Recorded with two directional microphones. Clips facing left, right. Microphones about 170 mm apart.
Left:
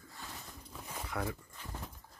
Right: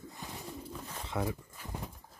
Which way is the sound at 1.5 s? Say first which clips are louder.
Right 3 dB; 10° right (ahead or behind).